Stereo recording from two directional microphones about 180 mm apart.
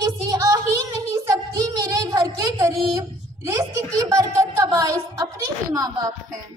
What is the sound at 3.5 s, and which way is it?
Speech, 20° right (ahead or behind).